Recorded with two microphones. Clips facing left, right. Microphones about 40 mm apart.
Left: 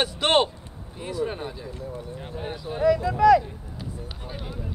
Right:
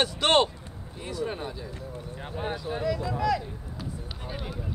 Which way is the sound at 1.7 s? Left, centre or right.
Right.